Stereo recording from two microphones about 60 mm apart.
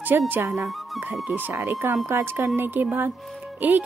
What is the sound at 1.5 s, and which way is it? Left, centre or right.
A woman's voice, right.